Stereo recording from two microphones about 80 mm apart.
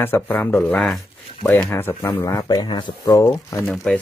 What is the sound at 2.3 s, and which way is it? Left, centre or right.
Speech, left.